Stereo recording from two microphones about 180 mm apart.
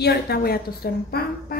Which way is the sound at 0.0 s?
60° left (ahead or behind).